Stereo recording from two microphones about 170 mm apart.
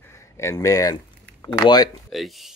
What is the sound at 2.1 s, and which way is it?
Speech, centre (ahead or behind).